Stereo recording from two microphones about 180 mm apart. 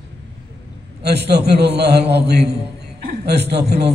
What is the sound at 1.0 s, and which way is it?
A man's voice, 65° right (ahead or behind).